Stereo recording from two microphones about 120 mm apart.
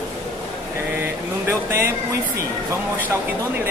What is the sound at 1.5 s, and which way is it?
Speech, 20° right (ahead or behind).